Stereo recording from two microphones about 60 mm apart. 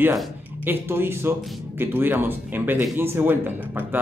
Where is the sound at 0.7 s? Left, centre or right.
Right.